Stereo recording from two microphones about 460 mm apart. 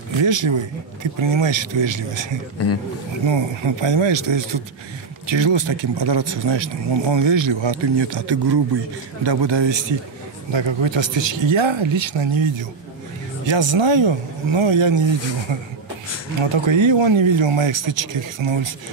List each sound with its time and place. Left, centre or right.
0.2 s speech: right
2.6 s a man's voice: left
3.3 s speech: right
16.3 s speech: right